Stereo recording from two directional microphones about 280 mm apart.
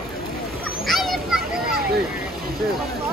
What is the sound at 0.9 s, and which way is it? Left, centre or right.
Children playing, centre.